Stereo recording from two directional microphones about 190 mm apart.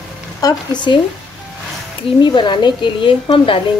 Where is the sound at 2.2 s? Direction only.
25° left (ahead or behind).